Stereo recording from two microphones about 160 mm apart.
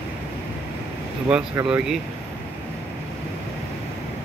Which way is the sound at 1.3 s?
5° right (ahead or behind).